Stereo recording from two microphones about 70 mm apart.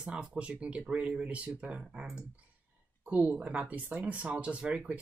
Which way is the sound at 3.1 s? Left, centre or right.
Right.